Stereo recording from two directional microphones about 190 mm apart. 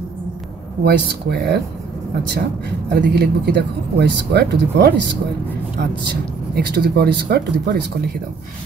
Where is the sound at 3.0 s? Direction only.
60° right (ahead or behind).